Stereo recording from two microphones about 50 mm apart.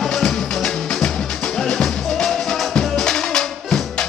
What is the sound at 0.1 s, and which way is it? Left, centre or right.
Music, centre.